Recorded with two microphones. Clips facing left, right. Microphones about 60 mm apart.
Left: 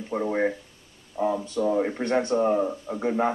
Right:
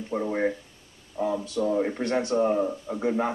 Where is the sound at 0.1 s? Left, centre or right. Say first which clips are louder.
Left 1 dB; centre.